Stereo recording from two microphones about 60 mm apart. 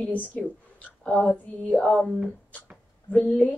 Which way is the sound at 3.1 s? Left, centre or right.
Centre.